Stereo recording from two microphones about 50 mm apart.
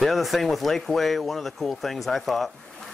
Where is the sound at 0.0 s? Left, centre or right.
Centre.